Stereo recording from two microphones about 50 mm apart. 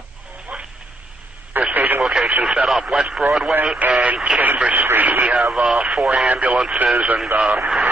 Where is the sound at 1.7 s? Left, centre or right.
Right.